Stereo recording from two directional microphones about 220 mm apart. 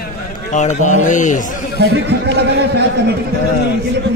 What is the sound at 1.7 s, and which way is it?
Speech, 45° right (ahead or behind).